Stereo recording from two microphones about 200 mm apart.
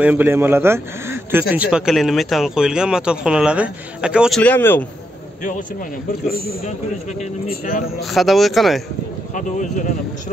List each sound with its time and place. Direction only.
0.0 s a man's voice: 10° right (ahead or behind)
4.4 s speech: 10° left (ahead or behind)
6.2 s a man's voice: 50° left (ahead or behind)
8.0 s speech: centre (ahead or behind)
9.3 s speech: 40° left (ahead or behind)